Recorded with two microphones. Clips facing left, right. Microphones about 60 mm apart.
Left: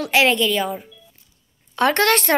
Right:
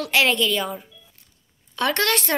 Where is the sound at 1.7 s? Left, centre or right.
Left.